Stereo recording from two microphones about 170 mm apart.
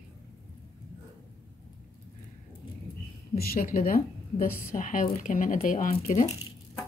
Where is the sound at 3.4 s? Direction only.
60° left (ahead or behind).